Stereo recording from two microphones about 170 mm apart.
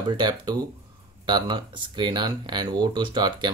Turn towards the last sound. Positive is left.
turn(degrees=-25)  # may be behind; listen again after turning